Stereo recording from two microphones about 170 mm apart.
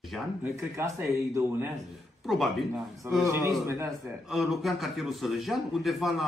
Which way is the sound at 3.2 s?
15° right (ahead or behind).